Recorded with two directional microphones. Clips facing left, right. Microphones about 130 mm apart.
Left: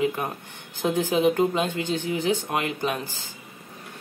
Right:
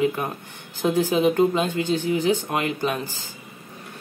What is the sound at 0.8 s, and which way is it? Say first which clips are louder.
Speech: right 2 dB; 5° left (ahead or behind).